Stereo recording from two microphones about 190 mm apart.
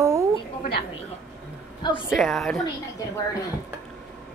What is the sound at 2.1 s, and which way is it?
Speech, centre (ahead or behind).